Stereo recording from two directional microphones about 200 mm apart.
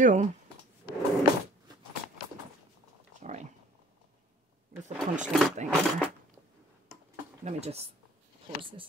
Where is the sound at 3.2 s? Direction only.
35° right (ahead or behind).